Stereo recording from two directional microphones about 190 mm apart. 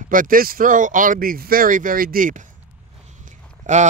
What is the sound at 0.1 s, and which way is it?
Speech, 45° right (ahead or behind).